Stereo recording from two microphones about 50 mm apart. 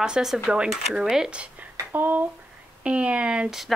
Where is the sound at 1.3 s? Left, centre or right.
Right.